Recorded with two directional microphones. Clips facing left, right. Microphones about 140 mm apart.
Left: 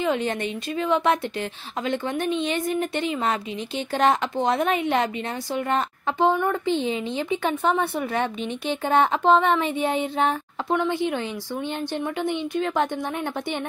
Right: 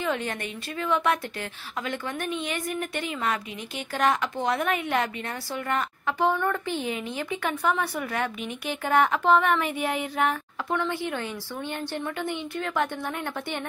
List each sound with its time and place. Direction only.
0.0 s a woman's voice: 20° left (ahead or behind)